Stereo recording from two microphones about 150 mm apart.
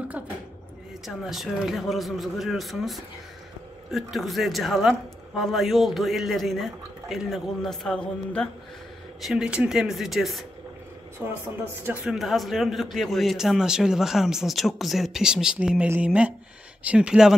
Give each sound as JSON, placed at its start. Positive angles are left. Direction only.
{"t": 1.0, "sound": "a man's voice", "side_deg": 0}
{"t": 9.2, "sound": "a man's voice", "side_deg": -5}
{"t": 11.1, "sound": "a man's voice", "side_deg": -15}